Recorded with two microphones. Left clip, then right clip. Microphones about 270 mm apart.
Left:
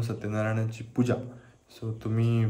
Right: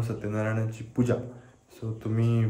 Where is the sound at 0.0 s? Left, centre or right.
Centre.